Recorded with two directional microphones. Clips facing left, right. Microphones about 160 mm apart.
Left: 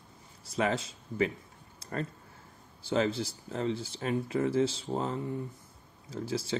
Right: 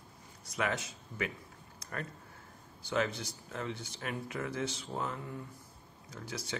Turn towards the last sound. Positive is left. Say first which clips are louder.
# left 8 dB
turn(degrees=30)  # may be behind; listen again after turning